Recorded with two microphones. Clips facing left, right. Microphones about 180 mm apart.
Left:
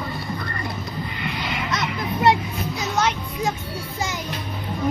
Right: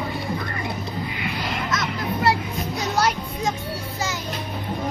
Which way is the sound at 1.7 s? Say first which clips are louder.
Left 1 dB; 20° left (ahead or behind).